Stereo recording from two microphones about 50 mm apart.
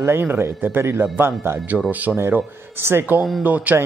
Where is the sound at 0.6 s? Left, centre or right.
Right.